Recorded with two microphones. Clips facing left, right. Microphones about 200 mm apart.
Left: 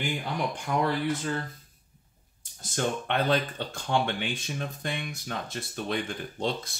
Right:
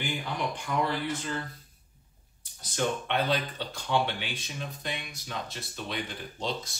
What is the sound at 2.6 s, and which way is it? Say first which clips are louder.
Speech: left 1 dB; 50° left (ahead or behind).